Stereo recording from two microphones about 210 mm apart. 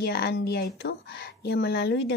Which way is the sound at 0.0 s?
50° left (ahead or behind).